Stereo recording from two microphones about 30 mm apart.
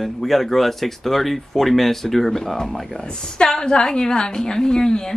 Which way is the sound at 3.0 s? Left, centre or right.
Left.